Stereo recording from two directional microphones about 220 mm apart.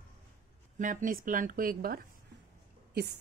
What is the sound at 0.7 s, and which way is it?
A woman's voice, 35° right (ahead or behind).